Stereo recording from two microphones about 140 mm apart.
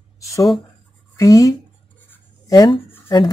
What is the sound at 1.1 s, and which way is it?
Speech, 25° left (ahead or behind).